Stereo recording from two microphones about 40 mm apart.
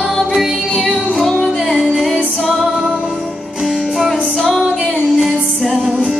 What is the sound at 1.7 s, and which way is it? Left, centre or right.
Music, centre.